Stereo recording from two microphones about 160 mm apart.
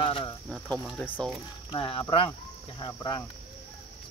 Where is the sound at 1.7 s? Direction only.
35° left (ahead or behind).